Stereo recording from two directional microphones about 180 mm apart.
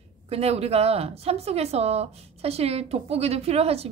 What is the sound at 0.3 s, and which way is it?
A woman's voice, 35° right (ahead or behind).